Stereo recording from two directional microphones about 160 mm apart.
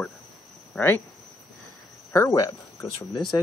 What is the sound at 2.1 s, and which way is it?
Speech, 20° left (ahead or behind).